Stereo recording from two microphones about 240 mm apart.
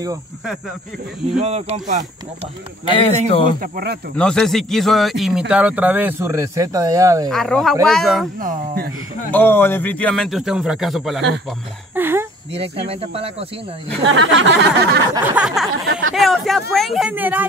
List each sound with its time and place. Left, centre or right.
1.4 s speech: right
2.9 s a man's voice: left
3.6 s speech: right
4.2 s a man's voice: centre
7.2 s a man's voice: centre
8.4 s speech: right
9.3 s a man's voice: centre
12.8 s speech: right
14.0 s a sound: right
15.3 s a man's voice: centre